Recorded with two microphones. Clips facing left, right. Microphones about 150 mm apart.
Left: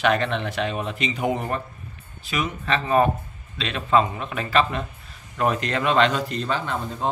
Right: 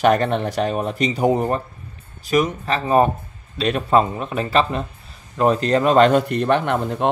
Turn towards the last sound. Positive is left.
turn(degrees=-65)  # may be behind; listen again after turning